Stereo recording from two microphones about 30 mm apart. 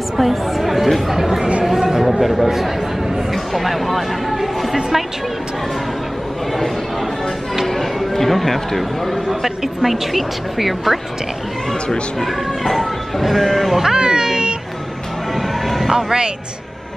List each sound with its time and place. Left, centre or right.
0.2 s speech: centre
1.6 s chatter: centre
3.5 s speech: centre
7.6 s speech: centre
12.2 s speech: centre
13.8 s cat: right
15.3 s music: centre